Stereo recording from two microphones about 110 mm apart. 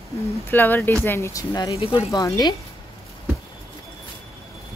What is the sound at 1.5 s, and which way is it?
A woman's voice, 35° left (ahead or behind).